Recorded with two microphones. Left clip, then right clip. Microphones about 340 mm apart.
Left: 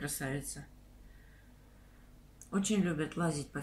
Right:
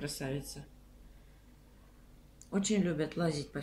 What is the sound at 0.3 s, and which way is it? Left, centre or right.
Speech, right.